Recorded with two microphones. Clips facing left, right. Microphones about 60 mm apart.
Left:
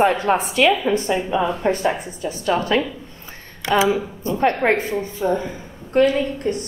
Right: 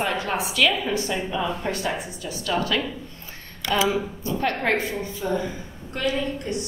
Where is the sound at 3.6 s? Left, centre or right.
Left.